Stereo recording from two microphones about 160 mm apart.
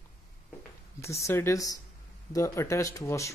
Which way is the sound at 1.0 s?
20° left (ahead or behind).